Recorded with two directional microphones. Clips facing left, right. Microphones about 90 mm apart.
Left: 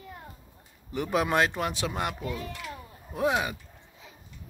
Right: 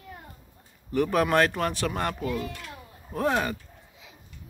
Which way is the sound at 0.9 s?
15° left (ahead or behind).